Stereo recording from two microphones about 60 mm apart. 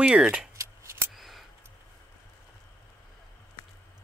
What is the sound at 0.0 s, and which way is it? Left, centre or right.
Speech, centre.